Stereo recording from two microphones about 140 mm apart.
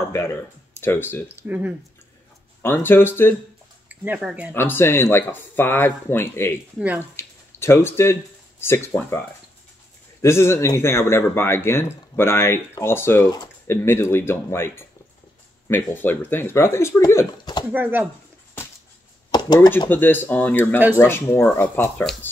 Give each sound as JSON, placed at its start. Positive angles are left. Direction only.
{"t": 0.0, "sound": "speech", "side_deg": 20}
{"t": 1.3, "sound": "speech", "side_deg": -10}
{"t": 2.6, "sound": "speech", "side_deg": 15}
{"t": 3.9, "sound": "speech", "side_deg": -10}
{"t": 4.6, "sound": "speech", "side_deg": 15}
{"t": 6.8, "sound": "speech", "side_deg": -10}
{"t": 7.2, "sound": "speech", "side_deg": 15}
{"t": 10.2, "sound": "speech", "side_deg": 20}
{"t": 17.6, "sound": "speech", "side_deg": -15}
{"t": 19.3, "sound": "a sound", "side_deg": 30}
{"t": 19.9, "sound": "speech", "side_deg": 15}